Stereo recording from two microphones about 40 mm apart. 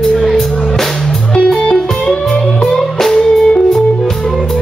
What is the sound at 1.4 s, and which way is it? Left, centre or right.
Music, left.